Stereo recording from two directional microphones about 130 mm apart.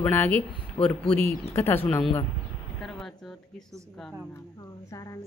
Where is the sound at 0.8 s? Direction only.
40° left (ahead or behind).